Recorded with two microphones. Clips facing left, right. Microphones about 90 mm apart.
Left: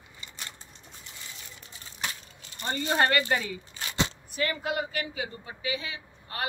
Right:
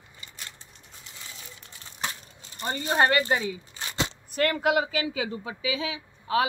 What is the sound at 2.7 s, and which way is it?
Speech, 25° right (ahead or behind).